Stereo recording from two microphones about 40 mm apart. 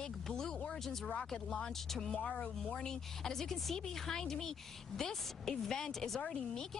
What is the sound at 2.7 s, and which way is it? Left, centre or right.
Speech, centre.